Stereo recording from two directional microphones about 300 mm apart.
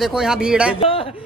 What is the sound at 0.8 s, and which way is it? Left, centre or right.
Speech, centre.